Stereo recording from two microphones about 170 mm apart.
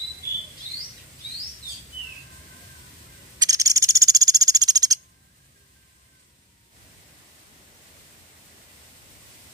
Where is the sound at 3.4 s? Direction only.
20° right (ahead or behind).